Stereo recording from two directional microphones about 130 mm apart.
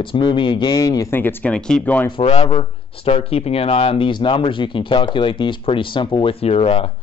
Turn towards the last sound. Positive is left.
turn(degrees=50)  # may be behind; listen again after turning